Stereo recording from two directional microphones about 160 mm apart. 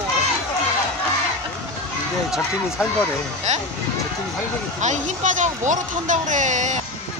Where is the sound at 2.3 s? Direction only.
5° right (ahead or behind).